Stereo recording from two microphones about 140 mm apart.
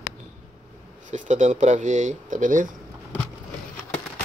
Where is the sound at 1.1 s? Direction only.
60° right (ahead or behind).